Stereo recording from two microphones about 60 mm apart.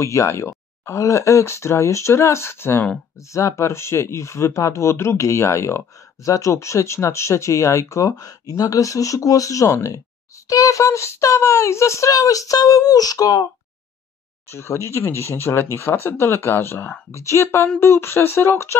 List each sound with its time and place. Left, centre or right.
0.0 s speech: left
6.2 s speech: left
10.5 s speech: left
14.5 s speech: left
17.1 s speech: left